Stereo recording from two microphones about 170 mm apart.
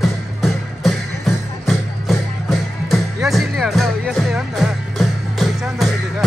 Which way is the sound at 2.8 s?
Centre (ahead or behind).